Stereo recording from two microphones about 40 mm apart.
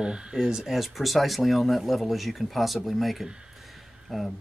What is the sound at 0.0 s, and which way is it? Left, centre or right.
Speech, centre.